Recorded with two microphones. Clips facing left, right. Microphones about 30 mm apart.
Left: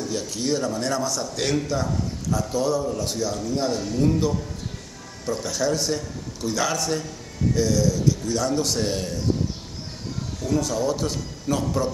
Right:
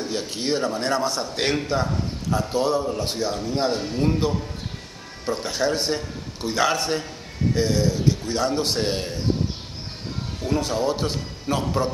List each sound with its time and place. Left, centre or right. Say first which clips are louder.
0.0 s speech: even; right
10.4 s speech: even; right